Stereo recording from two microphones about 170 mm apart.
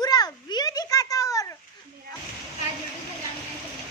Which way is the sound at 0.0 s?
20° left (ahead or behind).